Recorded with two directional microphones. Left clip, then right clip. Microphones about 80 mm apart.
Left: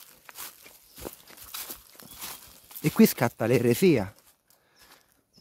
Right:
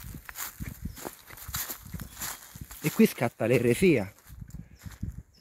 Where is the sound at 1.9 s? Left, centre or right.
Right.